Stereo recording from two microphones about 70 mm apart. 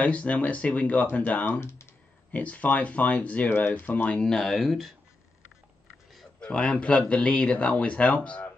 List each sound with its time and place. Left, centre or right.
0.0 s speech: left
1.6 s speech: left
2.3 s speech: left
4.2 s speech: centre
6.4 s speech: centre